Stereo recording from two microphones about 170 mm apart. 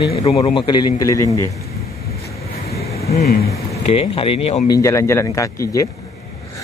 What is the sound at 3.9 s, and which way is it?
Speech, 35° left (ahead or behind).